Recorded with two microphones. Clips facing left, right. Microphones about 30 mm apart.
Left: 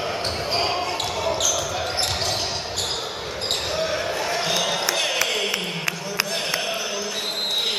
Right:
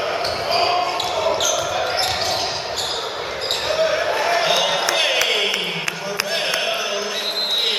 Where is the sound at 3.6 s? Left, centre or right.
Centre.